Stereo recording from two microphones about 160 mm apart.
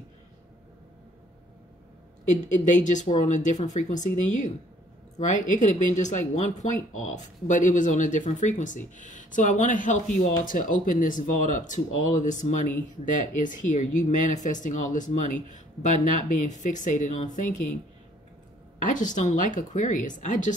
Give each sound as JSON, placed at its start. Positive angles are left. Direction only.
{"t": 2.2, "sound": "speech", "side_deg": 50}
{"t": 18.8, "sound": "speech", "side_deg": 50}